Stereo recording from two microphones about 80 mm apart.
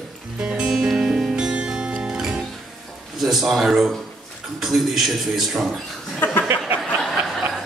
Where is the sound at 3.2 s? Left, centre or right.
Centre.